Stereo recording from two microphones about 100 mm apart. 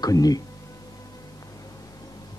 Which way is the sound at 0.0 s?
40° left (ahead or behind).